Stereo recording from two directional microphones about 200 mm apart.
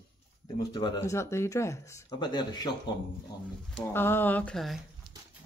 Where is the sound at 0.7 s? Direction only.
20° left (ahead or behind).